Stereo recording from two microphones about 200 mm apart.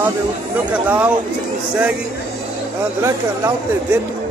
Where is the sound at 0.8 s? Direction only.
5° right (ahead or behind).